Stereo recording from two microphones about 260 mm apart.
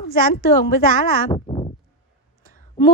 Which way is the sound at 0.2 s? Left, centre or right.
Left.